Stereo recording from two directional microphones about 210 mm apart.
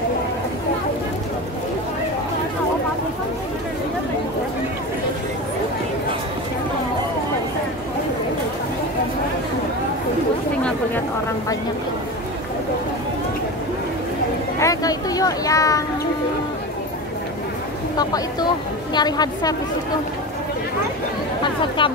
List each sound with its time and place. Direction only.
14.6 s a sound: 15° left (ahead or behind)
17.9 s speech: 20° left (ahead or behind)
21.4 s chatter: 25° left (ahead or behind)